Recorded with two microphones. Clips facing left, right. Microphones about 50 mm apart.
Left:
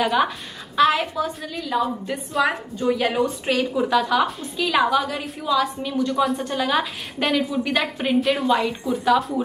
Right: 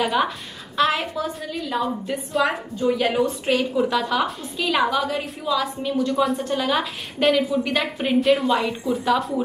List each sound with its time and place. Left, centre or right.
0.0 s a woman's voice: centre